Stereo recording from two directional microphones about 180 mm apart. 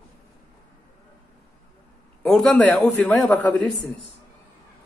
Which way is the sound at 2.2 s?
5° left (ahead or behind).